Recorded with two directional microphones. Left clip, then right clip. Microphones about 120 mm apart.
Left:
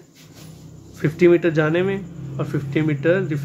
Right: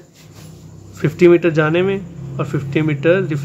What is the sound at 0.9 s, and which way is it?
Speech, 30° right (ahead or behind).